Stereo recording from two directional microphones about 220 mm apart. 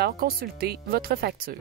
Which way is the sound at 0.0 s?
45° right (ahead or behind).